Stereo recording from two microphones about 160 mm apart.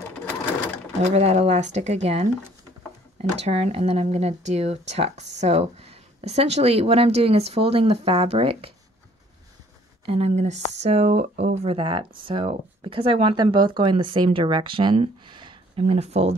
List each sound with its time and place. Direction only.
1.0 s speech: 45° right (ahead or behind)
3.3 s speech: 40° right (ahead or behind)
10.0 s speech: 40° right (ahead or behind)